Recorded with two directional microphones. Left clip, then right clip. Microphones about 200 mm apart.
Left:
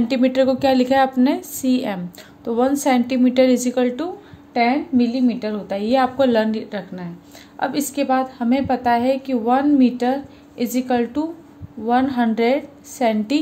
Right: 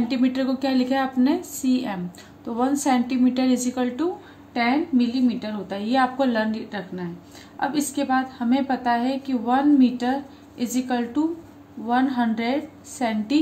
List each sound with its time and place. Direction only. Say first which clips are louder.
0.1 s a woman's voice: left 11 dB; 40° left (ahead or behind)